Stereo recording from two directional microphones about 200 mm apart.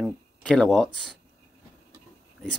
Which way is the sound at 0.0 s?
5° left (ahead or behind).